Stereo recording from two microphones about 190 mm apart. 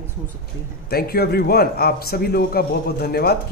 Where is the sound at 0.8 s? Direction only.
55° left (ahead or behind).